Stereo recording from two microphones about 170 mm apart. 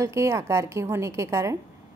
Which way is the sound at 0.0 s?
15° right (ahead or behind).